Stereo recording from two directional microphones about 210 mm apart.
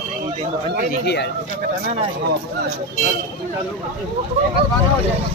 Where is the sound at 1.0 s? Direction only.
55° left (ahead or behind).